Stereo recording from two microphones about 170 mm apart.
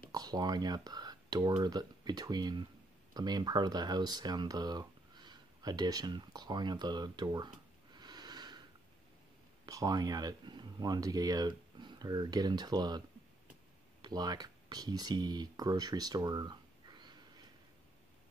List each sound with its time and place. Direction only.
0.1 s speech: 20° right (ahead or behind)
9.7 s speech: 20° right (ahead or behind)
14.0 s speech: 25° right (ahead or behind)